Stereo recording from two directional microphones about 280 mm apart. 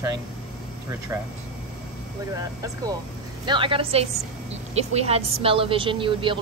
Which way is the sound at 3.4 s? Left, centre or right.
Centre.